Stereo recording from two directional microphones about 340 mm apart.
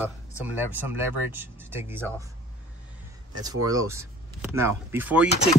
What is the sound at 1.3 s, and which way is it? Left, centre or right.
Speech, centre.